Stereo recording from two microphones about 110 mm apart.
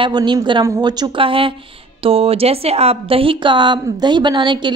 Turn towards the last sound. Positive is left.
turn(degrees=-45)  # may be behind; listen again after turning